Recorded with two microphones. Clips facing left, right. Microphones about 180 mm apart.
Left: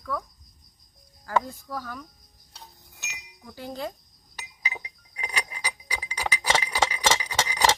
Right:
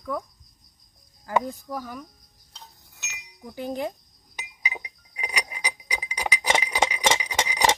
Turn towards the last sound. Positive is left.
turn(degrees=-15)  # may be behind; listen again after turning